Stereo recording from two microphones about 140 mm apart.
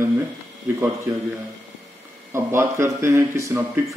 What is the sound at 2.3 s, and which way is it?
Speech, 20° right (ahead or behind).